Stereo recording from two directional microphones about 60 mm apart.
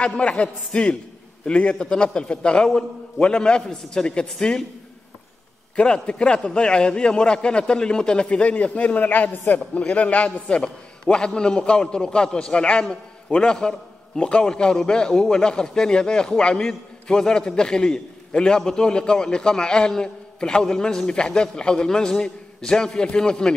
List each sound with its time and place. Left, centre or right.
0.0 s a man's voice: centre
5.8 s a man's voice: centre